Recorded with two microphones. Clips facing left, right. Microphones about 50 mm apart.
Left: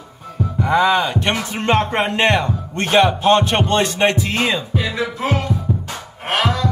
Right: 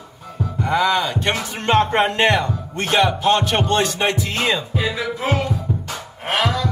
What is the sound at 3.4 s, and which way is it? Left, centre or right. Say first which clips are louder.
Speech: left 1 dB; left.